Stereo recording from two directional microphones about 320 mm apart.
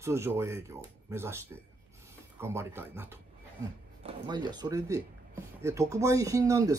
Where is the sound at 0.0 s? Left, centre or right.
Centre.